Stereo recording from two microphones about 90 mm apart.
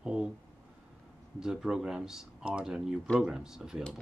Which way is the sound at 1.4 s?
5° right (ahead or behind).